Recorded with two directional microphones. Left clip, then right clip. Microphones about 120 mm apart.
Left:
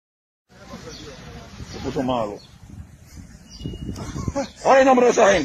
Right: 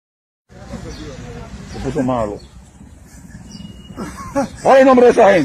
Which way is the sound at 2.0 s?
35° left (ahead or behind).